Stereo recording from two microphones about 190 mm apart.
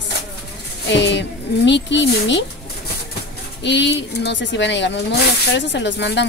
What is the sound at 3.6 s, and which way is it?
Speech, 70° left (ahead or behind).